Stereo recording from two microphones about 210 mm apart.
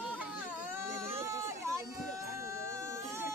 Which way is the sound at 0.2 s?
5° right (ahead or behind).